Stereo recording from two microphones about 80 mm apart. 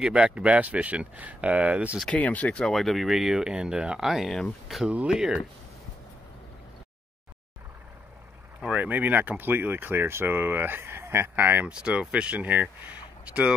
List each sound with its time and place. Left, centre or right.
0.0 s speech: centre
2.0 s speech: centre
2.7 s speech: centre
4.8 s speech: centre
8.5 s speech: centre
11.7 s speech: centre